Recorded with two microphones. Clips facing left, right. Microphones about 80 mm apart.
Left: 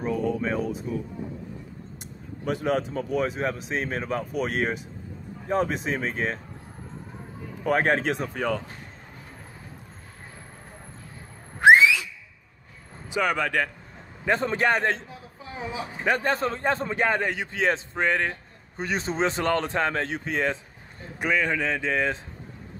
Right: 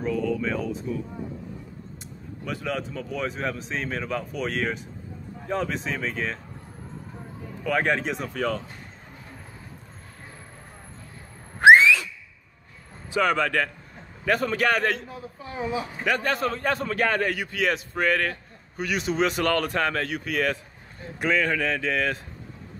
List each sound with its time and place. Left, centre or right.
0.0 s speech: left
2.4 s a man's voice: left
3.3 s a man's voice: centre
3.7 s a man's voice: left
7.6 s a man's voice: left
13.1 s a man's voice: centre
15.0 s a man's voice: centre
16.1 s a man's voice: left